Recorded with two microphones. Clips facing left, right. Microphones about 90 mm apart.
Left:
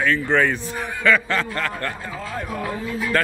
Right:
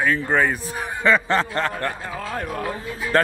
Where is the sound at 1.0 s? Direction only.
25° right (ahead or behind).